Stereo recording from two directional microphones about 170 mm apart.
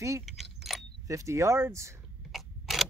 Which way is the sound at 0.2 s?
Centre (ahead or behind).